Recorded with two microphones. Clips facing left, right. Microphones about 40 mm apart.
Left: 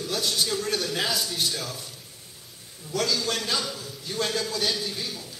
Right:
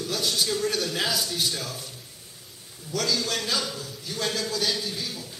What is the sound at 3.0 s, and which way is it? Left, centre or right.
A man's voice, centre.